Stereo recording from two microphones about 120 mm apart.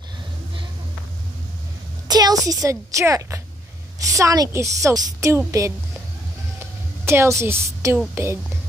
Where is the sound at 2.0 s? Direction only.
35° right (ahead or behind).